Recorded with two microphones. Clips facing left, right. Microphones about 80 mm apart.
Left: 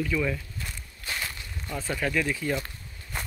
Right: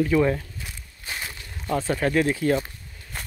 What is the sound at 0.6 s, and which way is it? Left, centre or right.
Walk, centre.